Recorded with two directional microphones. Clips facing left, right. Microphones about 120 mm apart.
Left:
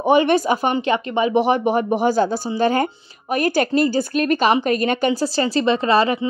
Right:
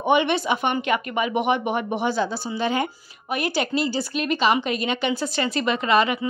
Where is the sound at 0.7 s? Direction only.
25° left (ahead or behind).